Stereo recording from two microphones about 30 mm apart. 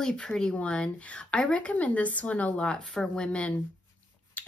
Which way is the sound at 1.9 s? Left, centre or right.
Left.